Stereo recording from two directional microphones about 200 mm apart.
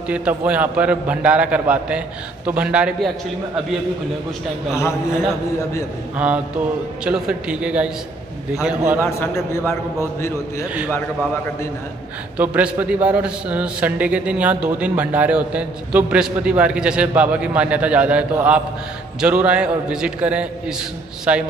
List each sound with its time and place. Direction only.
0.1 s a man's voice: 5° right (ahead or behind)
6.1 s a man's voice: 5° right (ahead or behind)
9.0 s a man's voice: 15° left (ahead or behind)
12.4 s a man's voice: 5° right (ahead or behind)